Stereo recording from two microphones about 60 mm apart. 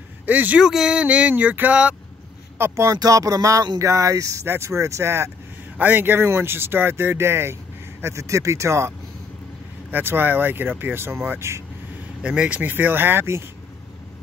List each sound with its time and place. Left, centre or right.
0.3 s speech: right
0.6 s a sound: centre
0.9 s speech: right
2.7 s speech: right
3.0 s speech: right
4.5 s speech: right
5.8 s speech: right
8.0 s speech: right
10.0 s speech: right
11.3 s speech: right
12.2 s speech: centre; by 13.4 s right